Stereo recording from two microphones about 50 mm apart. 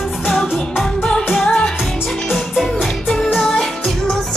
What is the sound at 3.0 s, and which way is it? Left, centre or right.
Music, centre.